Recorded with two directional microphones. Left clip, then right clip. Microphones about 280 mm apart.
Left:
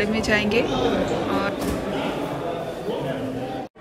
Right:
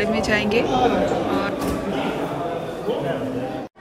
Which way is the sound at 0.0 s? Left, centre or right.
Centre.